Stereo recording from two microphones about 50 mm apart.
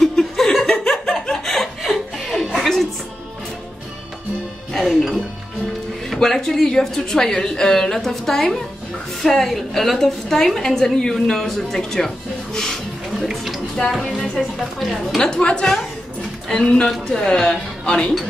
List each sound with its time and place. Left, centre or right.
0.0 s chuckle: centre
2.6 s music: centre
4.7 s music: centre
6.0 s a woman's voice: centre
12.5 s a sound: centre
13.3 s speech: centre
14.0 s a woman's voice: centre